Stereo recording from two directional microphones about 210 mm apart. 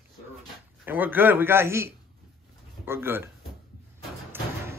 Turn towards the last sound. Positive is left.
turn(degrees=-10)  # may be behind; listen again after turning